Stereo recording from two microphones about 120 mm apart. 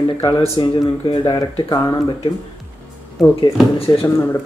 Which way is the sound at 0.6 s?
40° left (ahead or behind).